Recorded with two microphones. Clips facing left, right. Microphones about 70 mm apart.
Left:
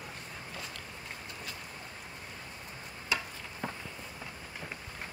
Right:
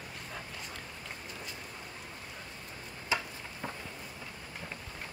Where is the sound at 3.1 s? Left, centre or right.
Right.